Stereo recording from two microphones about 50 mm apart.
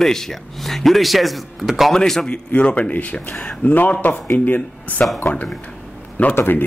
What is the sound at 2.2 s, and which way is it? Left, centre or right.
Speech, left.